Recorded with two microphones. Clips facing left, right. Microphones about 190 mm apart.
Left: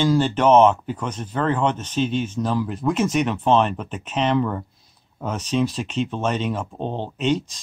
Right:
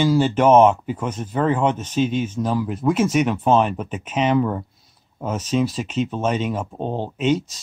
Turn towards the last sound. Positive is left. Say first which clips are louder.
# right 2 dB
turn(degrees=-5)  # may be behind; listen again after turning